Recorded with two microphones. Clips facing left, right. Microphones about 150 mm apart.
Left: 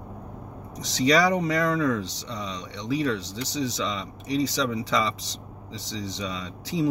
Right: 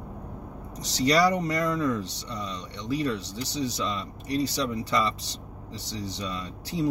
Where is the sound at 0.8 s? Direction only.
70° left (ahead or behind).